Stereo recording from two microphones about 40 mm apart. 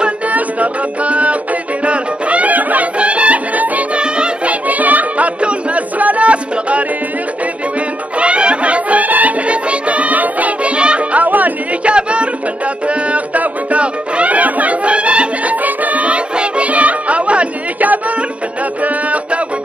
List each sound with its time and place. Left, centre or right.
0.3 s music: right
8.2 s music: right
9.5 s music: right
10.8 s music: right
11.2 s music: right
11.8 s music: right
15.6 s music: right
17.7 s music: right